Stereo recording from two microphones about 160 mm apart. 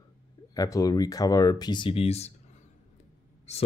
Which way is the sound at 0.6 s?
20° left (ahead or behind).